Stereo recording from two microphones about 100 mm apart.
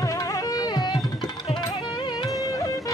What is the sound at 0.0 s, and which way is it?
Music, 35° left (ahead or behind).